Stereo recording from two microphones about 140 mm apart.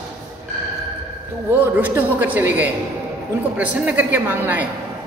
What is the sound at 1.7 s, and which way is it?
A man's voice, 10° right (ahead or behind).